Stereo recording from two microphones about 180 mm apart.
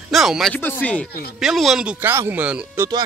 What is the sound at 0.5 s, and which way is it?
Speech, 10° left (ahead or behind).